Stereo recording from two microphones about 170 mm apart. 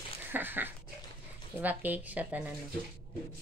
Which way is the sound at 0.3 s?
10° right (ahead or behind).